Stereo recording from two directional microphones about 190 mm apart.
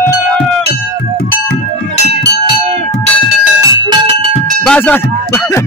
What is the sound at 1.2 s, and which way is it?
Music, 55° left (ahead or behind).